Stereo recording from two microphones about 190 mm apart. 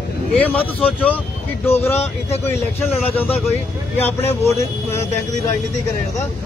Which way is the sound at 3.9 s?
10° left (ahead or behind).